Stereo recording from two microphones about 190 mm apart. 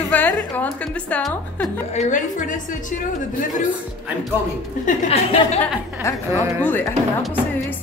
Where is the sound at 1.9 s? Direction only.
40° left (ahead or behind).